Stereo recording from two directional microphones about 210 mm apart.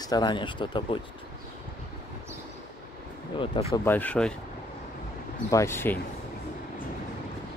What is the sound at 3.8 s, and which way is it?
Speech, 10° left (ahead or behind).